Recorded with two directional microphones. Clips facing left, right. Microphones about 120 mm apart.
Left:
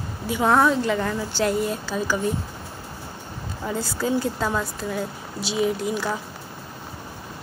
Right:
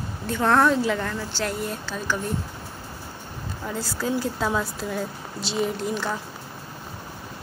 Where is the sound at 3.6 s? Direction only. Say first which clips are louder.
Left 3 dB; centre (ahead or behind).